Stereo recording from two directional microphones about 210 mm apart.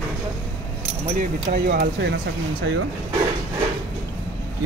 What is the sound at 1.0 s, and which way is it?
Speech, 40° right (ahead or behind).